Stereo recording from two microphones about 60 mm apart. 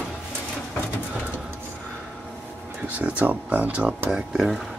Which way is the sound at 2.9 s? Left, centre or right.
Right.